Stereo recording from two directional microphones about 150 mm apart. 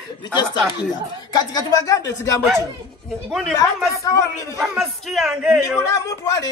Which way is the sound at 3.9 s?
20° left (ahead or behind).